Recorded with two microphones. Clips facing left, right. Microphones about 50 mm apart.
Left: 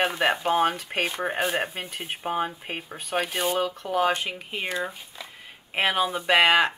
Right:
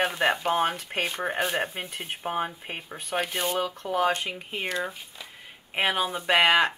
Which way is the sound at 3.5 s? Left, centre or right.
Left.